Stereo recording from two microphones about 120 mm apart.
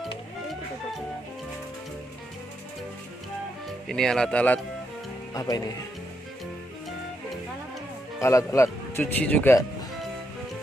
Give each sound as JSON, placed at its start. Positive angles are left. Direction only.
{"t": 3.9, "sound": "speech", "side_deg": 5}
{"t": 5.3, "sound": "speech", "side_deg": 35}
{"t": 8.2, "sound": "speech", "side_deg": 25}